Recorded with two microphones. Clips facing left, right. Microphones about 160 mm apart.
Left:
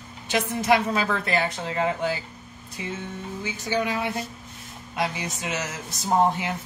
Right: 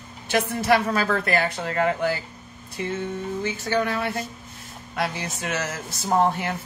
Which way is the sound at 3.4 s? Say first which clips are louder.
Right 1 dB; 15° left (ahead or behind).